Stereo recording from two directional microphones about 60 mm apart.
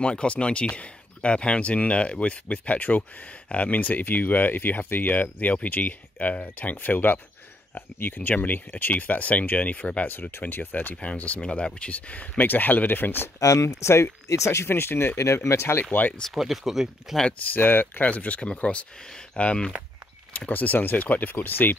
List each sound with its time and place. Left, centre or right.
0.0 s speech: centre; by 13.3 s left
13.4 s speech: left
15.1 s speech: left
16.3 s speech: centre
17.3 s speech: left